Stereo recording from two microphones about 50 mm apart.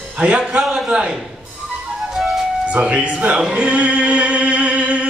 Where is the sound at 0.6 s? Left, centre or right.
Centre.